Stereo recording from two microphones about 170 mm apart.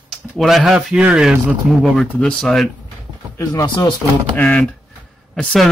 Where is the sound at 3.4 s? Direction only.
20° left (ahead or behind).